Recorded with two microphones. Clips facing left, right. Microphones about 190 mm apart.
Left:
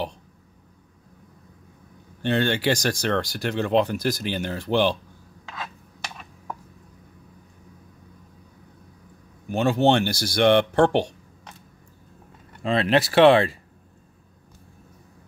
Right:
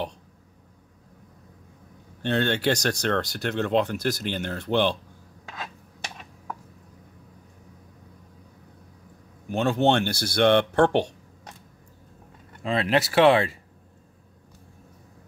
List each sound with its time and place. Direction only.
2.2 s speech: 5° left (ahead or behind)
9.5 s speech: 10° left (ahead or behind)
12.6 s speech: 25° left (ahead or behind)